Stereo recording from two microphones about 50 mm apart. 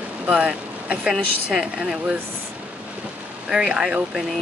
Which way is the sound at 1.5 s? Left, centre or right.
Centre.